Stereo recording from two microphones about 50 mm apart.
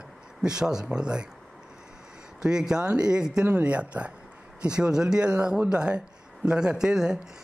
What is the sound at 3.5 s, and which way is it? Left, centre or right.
Speech, right.